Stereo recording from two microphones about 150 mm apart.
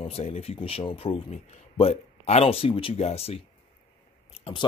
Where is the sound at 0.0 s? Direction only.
40° left (ahead or behind).